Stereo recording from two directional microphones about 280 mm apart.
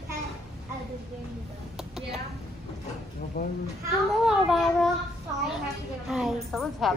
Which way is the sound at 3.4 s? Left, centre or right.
Left.